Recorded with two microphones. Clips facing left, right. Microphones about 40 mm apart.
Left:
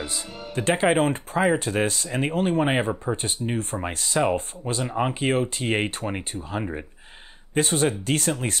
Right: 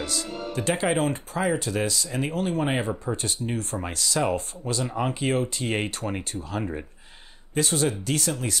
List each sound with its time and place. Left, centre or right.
0.0 s speech: left
0.7 s speech: left
6.6 s speech: centre
7.5 s speech: left